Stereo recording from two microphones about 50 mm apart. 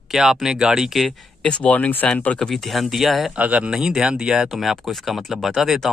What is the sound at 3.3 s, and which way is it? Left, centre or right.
Speech, right.